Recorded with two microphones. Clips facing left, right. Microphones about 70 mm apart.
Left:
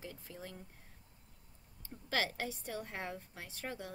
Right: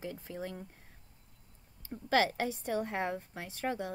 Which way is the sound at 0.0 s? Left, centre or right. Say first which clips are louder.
Right 8 dB; right.